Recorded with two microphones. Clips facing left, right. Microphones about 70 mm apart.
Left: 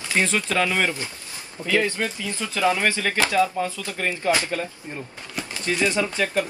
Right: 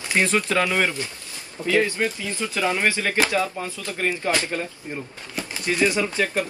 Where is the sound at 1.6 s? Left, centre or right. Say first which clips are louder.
Right 2 dB; left.